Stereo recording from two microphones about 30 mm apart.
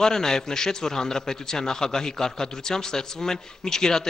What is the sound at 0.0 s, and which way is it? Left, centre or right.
A man's voice, centre.